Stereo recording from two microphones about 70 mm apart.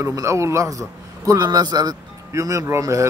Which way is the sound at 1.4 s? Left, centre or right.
Right.